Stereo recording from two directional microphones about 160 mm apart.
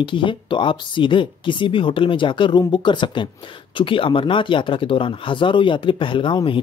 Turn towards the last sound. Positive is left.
turn(degrees=30)  # may be behind; listen again after turning